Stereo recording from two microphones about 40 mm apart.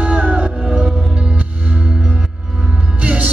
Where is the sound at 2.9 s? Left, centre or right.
Right.